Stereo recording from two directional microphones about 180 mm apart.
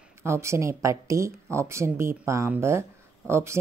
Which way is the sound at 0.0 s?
15° right (ahead or behind).